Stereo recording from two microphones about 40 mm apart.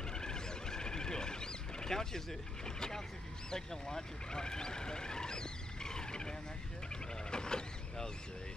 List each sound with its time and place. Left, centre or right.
0.1 s a sound: centre
3.4 s speech: centre
7.2 s vehicle: centre